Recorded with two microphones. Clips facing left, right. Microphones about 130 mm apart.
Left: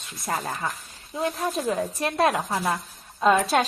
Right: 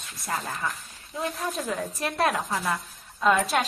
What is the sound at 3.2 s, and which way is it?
Speech, 25° left (ahead or behind).